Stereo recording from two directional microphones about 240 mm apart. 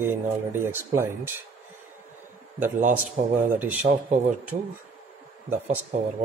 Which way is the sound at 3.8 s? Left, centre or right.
Right.